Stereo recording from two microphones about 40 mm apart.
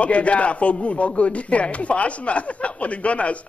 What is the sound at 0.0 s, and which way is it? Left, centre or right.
Speech, left.